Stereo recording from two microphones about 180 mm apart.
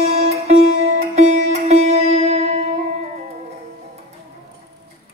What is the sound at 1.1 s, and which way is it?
Music, 40° right (ahead or behind).